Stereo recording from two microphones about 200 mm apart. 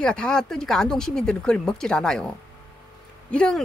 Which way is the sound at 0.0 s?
5° left (ahead or behind).